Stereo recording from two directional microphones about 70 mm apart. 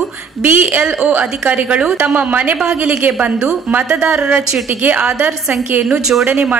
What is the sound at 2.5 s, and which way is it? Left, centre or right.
Speech, centre.